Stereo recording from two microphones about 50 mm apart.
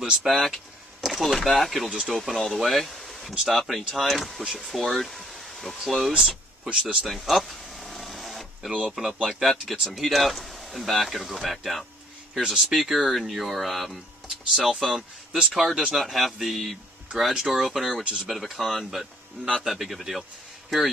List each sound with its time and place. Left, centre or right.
0.2 s speech: centre
6.7 s speech: centre
7.1 s a sound: centre
8.9 s speech: centre
18.0 s speech: right
18.3 s speech: centre